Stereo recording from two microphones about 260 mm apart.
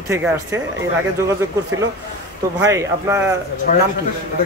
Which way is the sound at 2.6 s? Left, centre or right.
Centre.